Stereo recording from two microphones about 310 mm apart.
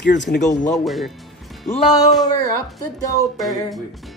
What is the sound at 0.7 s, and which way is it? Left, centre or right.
Music, centre.